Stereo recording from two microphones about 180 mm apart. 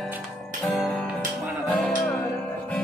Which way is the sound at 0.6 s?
Centre (ahead or behind).